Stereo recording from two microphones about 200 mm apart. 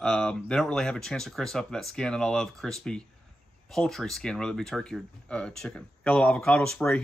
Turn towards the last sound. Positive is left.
turn(degrees=5)  # may be behind; listen again after turning